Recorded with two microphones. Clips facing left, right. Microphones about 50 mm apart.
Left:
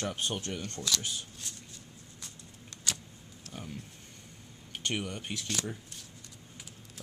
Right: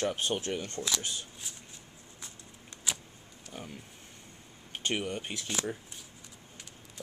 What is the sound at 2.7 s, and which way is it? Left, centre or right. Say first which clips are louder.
Vehicle: right 2 dB; centre.